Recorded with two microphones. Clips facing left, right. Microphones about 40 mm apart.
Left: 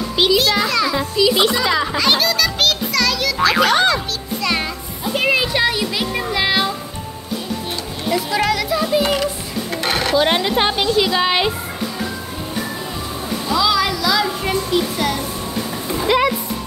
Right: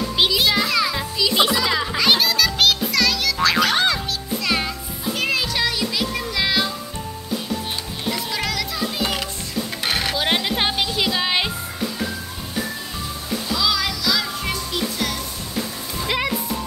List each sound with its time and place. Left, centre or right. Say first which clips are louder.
0.6 s music: left 3 dB; centre
5.1 s music: left 6 dB; centre
8.1 s music: left 8 dB; centre
9.8 s speech: left 6 dB; centre
13.5 s music: left 6 dB; centre
16.1 s speech: left 7 dB; centre